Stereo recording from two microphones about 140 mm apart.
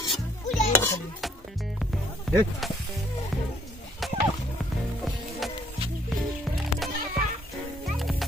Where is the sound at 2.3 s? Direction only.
Centre (ahead or behind).